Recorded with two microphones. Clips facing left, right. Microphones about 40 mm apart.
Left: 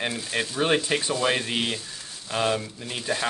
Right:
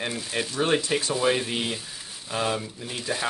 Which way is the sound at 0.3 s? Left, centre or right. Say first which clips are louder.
Left 1 dB; centre.